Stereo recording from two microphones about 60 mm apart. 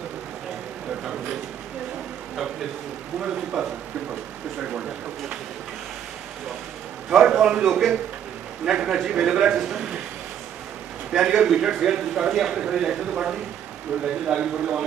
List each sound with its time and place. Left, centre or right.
3.2 s a man's voice: centre
7.1 s a man's voice: centre
7.7 s a man's voice: centre
8.6 s a man's voice: centre
11.1 s a man's voice: centre